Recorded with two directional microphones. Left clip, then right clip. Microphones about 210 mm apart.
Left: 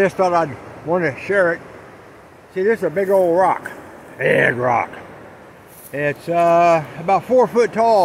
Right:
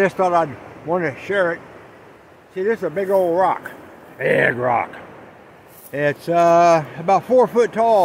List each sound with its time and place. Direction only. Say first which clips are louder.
0.0 s speech: left 1 dB; 10° right (ahead or behind)
5.9 s speech: right 1 dB; 25° right (ahead or behind); by 8.0 s centre (ahead or behind)